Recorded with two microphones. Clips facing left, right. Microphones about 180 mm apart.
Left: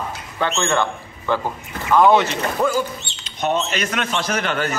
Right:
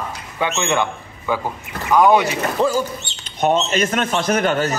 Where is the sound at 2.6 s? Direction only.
25° right (ahead or behind).